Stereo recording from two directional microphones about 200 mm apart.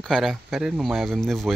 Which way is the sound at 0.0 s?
Centre (ahead or behind).